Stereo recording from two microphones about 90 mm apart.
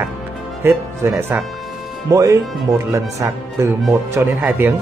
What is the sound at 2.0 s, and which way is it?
Speech, 40° right (ahead or behind).